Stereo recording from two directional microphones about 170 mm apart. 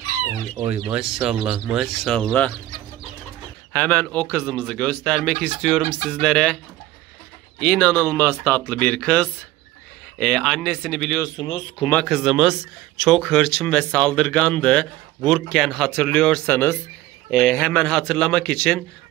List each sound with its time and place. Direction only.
0.7 s speech: 5° right (ahead or behind)
3.7 s speech: 10° left (ahead or behind)
11.3 s speech: 30° left (ahead or behind)
12.1 s speech: 5° right (ahead or behind)